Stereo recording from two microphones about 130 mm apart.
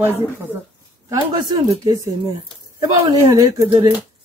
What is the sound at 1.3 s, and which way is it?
A woman's voice, 30° right (ahead or behind).